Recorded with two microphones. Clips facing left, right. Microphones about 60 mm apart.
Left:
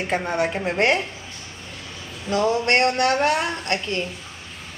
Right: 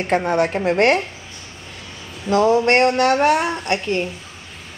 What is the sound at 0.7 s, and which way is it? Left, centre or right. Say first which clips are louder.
Speech: right 4 dB; right.